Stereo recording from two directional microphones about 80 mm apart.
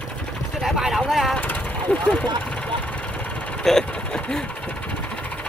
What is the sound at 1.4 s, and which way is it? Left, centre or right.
Vehicle, centre.